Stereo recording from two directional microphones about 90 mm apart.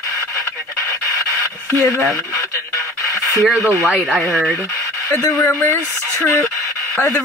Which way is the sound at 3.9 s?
Centre (ahead or behind).